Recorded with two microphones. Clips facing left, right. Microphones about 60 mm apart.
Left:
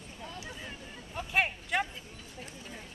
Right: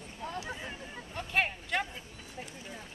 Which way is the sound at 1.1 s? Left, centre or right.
Centre.